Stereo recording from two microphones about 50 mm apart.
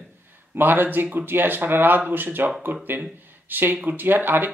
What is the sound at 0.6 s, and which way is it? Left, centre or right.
Speech, right.